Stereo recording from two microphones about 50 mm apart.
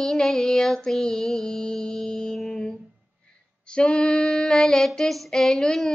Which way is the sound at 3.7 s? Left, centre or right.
Centre.